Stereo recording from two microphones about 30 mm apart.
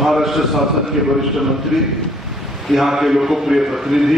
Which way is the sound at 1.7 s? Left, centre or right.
Centre.